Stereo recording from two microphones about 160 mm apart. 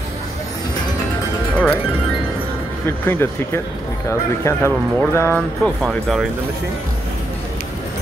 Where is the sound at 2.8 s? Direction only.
15° left (ahead or behind).